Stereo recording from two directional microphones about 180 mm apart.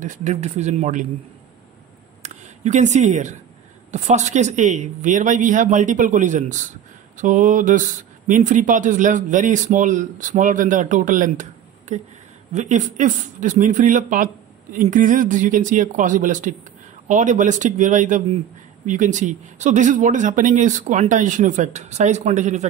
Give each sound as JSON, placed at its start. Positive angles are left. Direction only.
{"t": 0.0, "sound": "speech", "side_deg": -45}
{"t": 2.2, "sound": "speech", "side_deg": -40}